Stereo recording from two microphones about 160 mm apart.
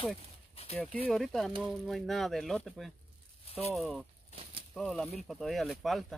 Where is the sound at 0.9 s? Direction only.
5° left (ahead or behind).